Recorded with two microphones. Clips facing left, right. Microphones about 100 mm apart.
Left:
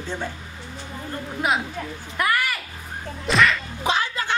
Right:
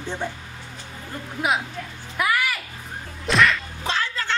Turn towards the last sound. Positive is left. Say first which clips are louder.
# left 3 dB
turn(degrees=15)  # may be behind; listen again after turning